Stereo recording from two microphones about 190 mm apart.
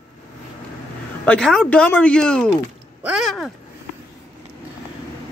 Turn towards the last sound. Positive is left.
turn(degrees=0)  # may be behind; listen again after turning